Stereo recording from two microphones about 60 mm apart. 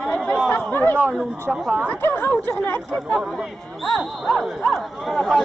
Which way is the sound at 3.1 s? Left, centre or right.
Centre.